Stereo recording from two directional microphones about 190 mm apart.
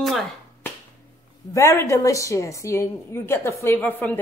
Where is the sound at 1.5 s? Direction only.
15° left (ahead or behind).